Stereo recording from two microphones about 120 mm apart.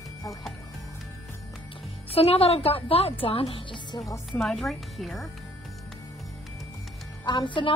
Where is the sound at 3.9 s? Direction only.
30° left (ahead or behind).